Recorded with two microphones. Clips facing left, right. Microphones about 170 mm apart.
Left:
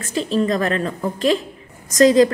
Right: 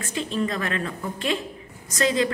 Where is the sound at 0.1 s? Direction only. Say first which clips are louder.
Left 8 dB; 35° left (ahead or behind).